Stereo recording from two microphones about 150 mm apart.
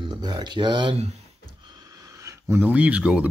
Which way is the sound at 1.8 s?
20° right (ahead or behind).